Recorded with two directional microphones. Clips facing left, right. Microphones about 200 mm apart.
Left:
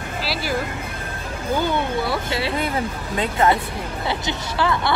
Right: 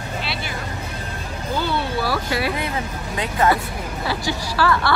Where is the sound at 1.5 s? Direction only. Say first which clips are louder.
Left 2 dB; 15° left (ahead or behind).